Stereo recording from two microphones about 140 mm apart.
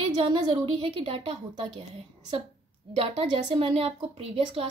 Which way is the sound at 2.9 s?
45° right (ahead or behind).